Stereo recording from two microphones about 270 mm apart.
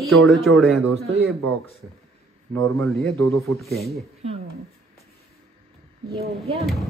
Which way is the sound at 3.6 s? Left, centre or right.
Centre.